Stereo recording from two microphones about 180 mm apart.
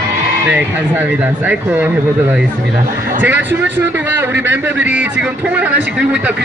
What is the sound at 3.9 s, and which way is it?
A man's voice, 10° right (ahead or behind).